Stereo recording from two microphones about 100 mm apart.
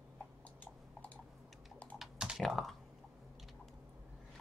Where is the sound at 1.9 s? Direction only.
5° right (ahead or behind).